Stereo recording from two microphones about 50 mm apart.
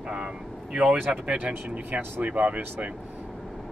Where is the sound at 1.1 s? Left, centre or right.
Right.